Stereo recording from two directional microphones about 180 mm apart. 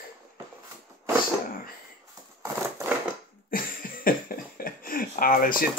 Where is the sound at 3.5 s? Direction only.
50° left (ahead or behind).